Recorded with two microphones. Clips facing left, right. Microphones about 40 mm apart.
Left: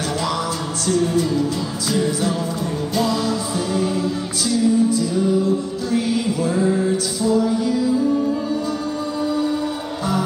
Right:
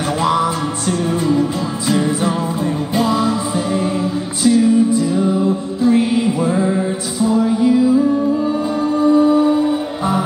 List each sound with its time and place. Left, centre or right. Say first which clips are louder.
0.2 s music: right 7 dB; right